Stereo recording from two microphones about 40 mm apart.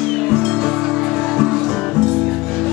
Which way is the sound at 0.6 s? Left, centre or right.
Centre.